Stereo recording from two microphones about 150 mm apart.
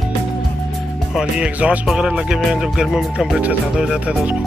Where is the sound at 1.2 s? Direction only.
5° right (ahead or behind).